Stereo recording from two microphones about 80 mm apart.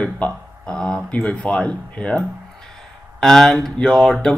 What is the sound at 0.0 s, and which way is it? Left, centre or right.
Speech, centre.